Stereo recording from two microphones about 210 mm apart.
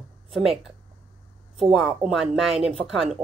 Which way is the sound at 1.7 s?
Centre (ahead or behind).